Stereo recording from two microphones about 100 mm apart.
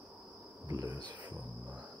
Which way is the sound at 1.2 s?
15° right (ahead or behind).